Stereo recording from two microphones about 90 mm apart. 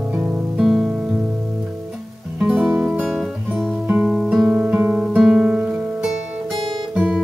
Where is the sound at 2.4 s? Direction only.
15° right (ahead or behind).